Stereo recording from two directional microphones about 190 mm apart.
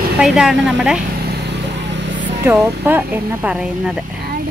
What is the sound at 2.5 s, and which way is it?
Speech, 10° right (ahead or behind).